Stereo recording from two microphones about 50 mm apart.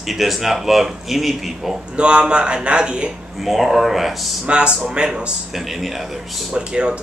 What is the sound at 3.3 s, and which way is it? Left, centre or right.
Speech, centre.